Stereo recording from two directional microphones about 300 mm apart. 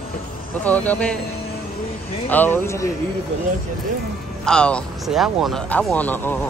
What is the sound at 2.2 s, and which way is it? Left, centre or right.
Speech, centre.